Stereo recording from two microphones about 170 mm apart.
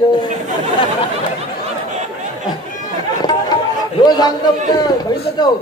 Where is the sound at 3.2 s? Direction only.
25° left (ahead or behind).